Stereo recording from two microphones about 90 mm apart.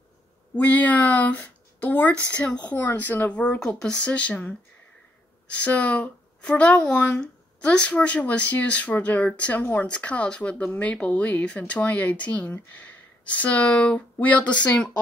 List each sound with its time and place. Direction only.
0.6 s speech: 15° left (ahead or behind)